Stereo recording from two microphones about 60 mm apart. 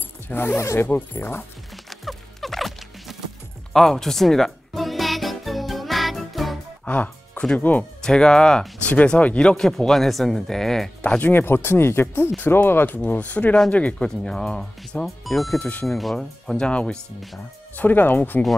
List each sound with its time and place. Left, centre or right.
0.3 s speech: left
0.6 s speech: left
0.8 s speech: left
1.9 s music: centre
6.9 s music: left
7.5 s speech: left
8.0 s speech: centre
8.8 s speech: left; by 10.9 s centre
11.0 s speech: left
13.9 s speech: centre
15.0 s speech: centre
15.6 s speech: left
15.9 s speech: centre
17.7 s speech: left